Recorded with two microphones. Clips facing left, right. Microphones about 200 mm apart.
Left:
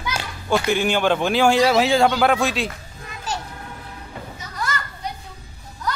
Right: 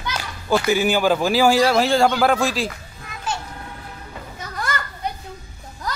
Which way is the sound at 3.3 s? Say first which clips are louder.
Right 1 dB; 40° left (ahead or behind).